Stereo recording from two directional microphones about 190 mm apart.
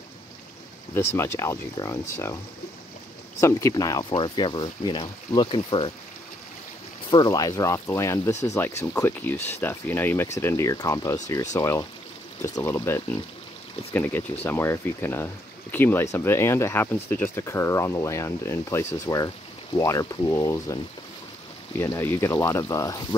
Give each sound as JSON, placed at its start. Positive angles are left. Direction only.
{"t": 0.9, "sound": "speech", "side_deg": 15}
{"t": 3.3, "sound": "speech", "side_deg": 15}
{"t": 7.1, "sound": "speech", "side_deg": 20}
{"t": 21.9, "sound": "speech", "side_deg": 15}